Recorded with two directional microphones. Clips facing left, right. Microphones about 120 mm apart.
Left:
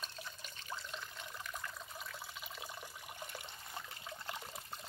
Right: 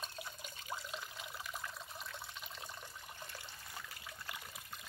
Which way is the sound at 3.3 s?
20° left (ahead or behind).